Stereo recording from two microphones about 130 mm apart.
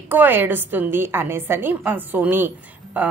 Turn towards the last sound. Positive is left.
turn(degrees=-15)  # may be behind; listen again after turning